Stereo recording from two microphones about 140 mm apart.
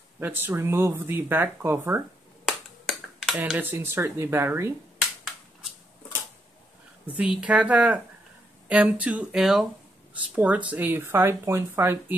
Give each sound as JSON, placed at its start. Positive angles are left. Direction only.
{"t": 0.2, "sound": "speech", "side_deg": -15}
{"t": 2.4, "sound": "finger snapping", "side_deg": 0}
{"t": 3.3, "sound": "speech", "side_deg": -10}
{"t": 7.1, "sound": "speech", "side_deg": -10}